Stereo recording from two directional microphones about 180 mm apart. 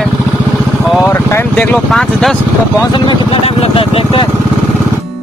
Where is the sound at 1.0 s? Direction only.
15° left (ahead or behind).